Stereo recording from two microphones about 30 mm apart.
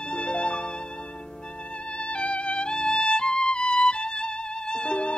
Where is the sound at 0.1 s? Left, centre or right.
Left.